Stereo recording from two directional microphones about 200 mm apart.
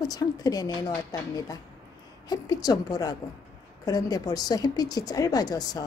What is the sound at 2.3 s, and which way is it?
Speech, 20° left (ahead or behind).